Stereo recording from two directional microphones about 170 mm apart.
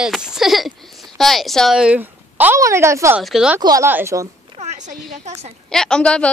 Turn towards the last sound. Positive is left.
turn(degrees=5)  # may be behind; listen again after turning